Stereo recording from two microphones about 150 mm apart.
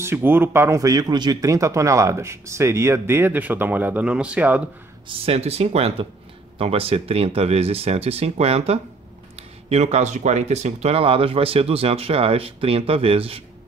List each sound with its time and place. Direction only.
0.0 s speech: 15° right (ahead or behind)
5.0 s speech: 40° right (ahead or behind)